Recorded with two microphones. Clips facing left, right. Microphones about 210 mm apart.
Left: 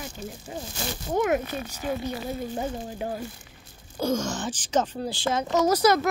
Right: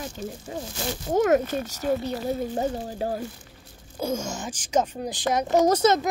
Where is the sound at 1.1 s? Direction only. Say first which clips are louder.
Right 4 dB; 40° right (ahead or behind).